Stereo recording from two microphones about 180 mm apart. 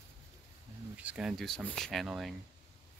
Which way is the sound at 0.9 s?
5° right (ahead or behind).